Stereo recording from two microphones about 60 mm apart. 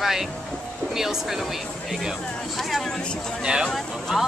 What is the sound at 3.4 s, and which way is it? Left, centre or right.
Speech, centre.